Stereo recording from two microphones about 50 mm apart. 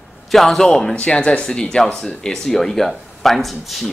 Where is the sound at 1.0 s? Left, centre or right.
Left.